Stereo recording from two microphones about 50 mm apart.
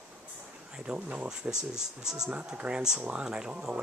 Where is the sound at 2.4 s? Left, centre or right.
Centre.